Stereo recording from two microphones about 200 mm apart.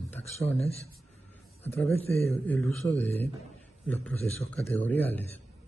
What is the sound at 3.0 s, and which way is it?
Speech, 30° left (ahead or behind).